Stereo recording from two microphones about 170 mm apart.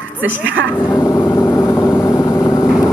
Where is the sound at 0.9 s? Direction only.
20° left (ahead or behind).